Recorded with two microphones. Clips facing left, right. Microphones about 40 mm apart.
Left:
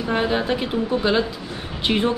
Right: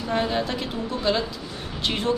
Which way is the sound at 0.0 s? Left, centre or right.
Left.